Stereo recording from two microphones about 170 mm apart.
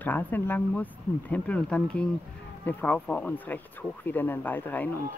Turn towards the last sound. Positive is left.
turn(degrees=10)  # may be behind; listen again after turning